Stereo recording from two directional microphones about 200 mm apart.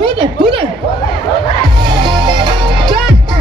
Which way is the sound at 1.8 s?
25° right (ahead or behind).